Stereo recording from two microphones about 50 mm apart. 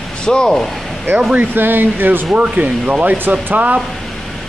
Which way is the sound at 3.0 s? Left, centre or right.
Right.